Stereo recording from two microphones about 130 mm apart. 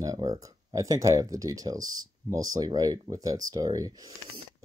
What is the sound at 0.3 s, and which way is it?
Speech, 25° right (ahead or behind).